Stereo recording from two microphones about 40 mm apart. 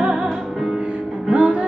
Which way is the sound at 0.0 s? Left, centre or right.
Right.